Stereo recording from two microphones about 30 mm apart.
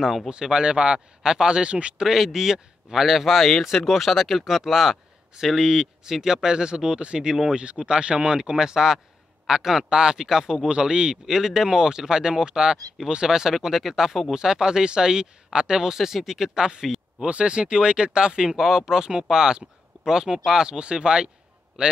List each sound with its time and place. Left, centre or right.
0.3 s speech: right
1.6 s speech: right
2.0 s speech: centre; by 8.2 s right
8.3 s speech: right
10.7 s speech: right
11.2 s speech: centre
14.3 s speech: right
17.2 s speech: right